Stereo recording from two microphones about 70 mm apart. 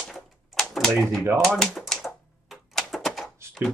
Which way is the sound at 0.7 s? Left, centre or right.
Centre.